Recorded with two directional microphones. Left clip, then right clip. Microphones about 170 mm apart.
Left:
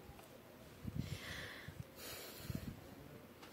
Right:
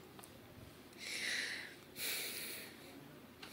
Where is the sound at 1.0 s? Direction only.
15° left (ahead or behind).